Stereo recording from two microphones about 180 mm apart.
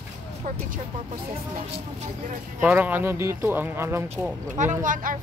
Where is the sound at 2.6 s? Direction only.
10° right (ahead or behind).